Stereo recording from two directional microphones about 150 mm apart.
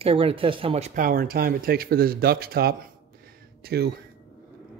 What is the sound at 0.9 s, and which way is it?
Speech, 70° right (ahead or behind).